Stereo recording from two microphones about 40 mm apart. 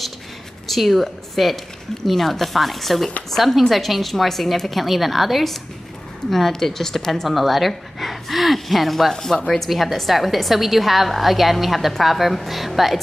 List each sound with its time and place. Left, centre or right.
0.7 s a woman's voice: centre
9.1 s a woman's voice: centre